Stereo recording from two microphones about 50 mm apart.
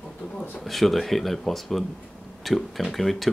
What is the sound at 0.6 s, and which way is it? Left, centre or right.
Speech, centre.